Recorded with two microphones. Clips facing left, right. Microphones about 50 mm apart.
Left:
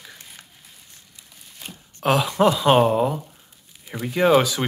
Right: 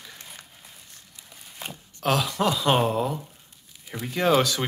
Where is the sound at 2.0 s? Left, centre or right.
Centre.